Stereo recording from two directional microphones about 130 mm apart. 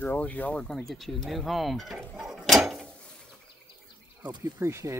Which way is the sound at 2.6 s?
Centre (ahead or behind).